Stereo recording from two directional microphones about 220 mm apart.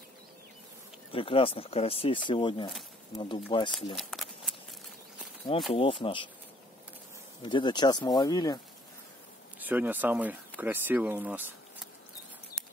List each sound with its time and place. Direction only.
1.1 s speech: 25° left (ahead or behind)
3.7 s a sound: centre (ahead or behind)
5.8 s speech: 25° left (ahead or behind)
7.4 s speech: 20° left (ahead or behind)
9.6 s speech: 10° right (ahead or behind)